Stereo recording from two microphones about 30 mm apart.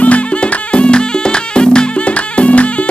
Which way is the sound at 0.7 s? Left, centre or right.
Left.